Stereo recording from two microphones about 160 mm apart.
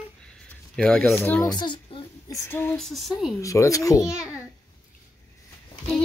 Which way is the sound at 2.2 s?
20° left (ahead or behind).